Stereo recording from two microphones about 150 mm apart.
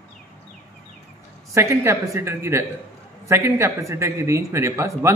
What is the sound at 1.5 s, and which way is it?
A man's voice, 20° right (ahead or behind).